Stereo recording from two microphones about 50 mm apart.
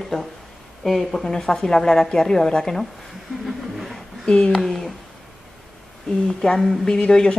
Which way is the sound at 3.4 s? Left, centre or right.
Centre.